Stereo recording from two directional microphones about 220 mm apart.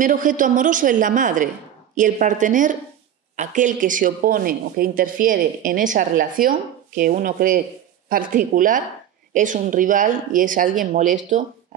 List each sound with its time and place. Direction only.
0.0 s speech: 35° right (ahead or behind)